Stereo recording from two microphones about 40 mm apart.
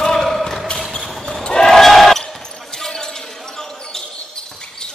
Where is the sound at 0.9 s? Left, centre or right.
Centre.